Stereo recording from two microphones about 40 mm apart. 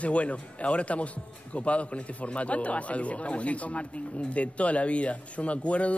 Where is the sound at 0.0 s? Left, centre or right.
Left.